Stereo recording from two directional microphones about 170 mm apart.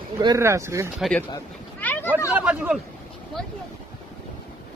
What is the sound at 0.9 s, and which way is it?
Speech, centre (ahead or behind).